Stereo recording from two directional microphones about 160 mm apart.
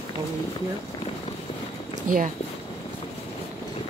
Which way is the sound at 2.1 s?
55° right (ahead or behind).